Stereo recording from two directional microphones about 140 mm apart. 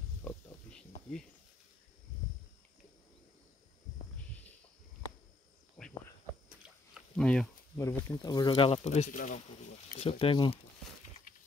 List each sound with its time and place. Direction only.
0.2 s snake: 10° left (ahead or behind)
5.8 s insect: centre (ahead or behind)
6.5 s a sound: 10° right (ahead or behind)
7.2 s a sound: 5° left (ahead or behind)
7.7 s speech: 20° left (ahead or behind); by 8.8 s 35° left (ahead or behind)
8.8 s speech: 55° left (ahead or behind)
9.9 s speech: 40° left (ahead or behind)